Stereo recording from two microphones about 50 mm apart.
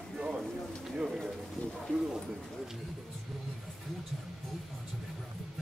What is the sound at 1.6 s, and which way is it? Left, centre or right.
Bird, left.